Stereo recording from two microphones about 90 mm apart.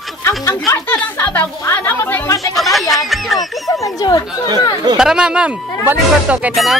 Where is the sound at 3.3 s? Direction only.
45° left (ahead or behind).